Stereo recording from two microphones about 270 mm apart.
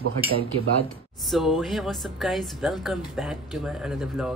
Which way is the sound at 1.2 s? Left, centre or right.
Centre.